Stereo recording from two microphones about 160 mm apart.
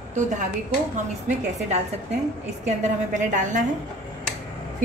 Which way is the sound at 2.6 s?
50° right (ahead or behind).